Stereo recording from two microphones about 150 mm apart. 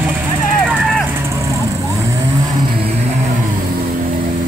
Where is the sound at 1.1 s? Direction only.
20° right (ahead or behind).